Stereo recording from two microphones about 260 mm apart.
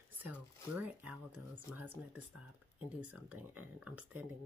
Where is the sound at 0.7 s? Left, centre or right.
Centre.